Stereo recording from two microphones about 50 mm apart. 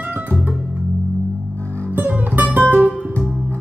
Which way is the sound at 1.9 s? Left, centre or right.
Right.